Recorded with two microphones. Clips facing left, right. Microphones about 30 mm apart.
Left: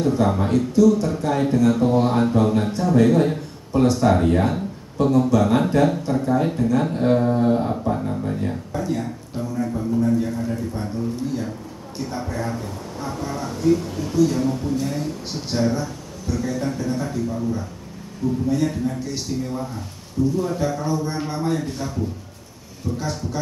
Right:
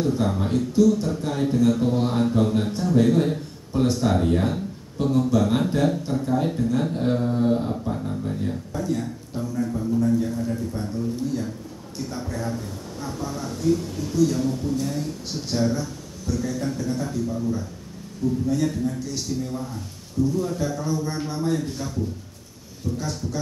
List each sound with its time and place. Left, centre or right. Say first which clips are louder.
0.0 s a man's voice: left 4 dB; centre
22.9 s speech: left 3 dB; centre